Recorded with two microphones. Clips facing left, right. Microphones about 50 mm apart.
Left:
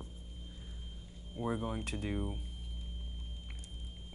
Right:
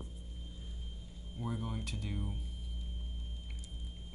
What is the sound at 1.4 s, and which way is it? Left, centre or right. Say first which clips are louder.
Speech: left 4 dB; left.